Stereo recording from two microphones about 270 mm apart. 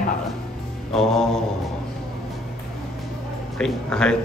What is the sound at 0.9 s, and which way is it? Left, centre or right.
Speech, centre.